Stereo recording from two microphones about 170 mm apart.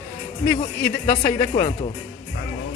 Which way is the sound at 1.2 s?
25° left (ahead or behind).